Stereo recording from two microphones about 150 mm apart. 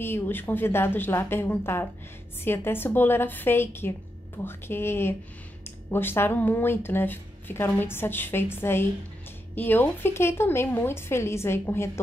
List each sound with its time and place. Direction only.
0.0 s speech: 15° left (ahead or behind)